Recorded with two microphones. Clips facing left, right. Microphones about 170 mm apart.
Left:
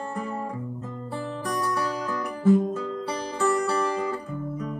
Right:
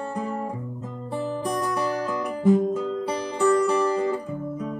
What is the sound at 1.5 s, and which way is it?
Music, 20° right (ahead or behind).